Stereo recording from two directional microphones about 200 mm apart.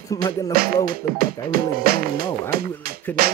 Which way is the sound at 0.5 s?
45° right (ahead or behind).